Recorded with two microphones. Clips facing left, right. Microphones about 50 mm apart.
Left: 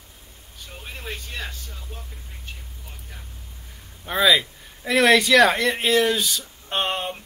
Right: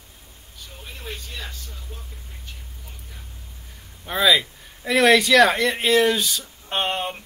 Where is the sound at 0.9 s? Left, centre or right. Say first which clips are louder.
Left 2 dB; left.